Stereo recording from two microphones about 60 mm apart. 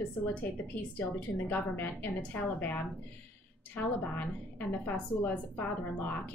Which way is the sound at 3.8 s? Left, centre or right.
Left.